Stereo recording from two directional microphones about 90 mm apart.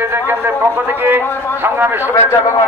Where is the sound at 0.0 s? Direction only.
25° right (ahead or behind).